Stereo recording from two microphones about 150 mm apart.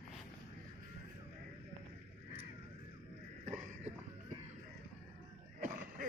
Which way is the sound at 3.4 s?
50° right (ahead or behind).